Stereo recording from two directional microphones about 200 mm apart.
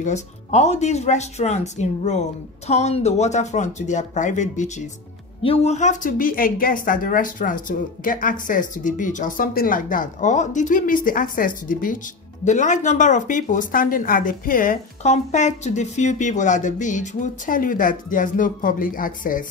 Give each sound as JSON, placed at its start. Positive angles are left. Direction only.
{"t": 0.0, "sound": "a woman's voice", "side_deg": 35}